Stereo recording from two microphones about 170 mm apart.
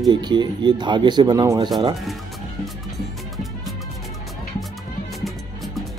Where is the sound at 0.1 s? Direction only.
25° right (ahead or behind).